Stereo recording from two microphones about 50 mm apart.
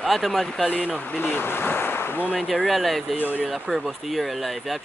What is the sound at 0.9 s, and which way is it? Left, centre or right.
Speech, left.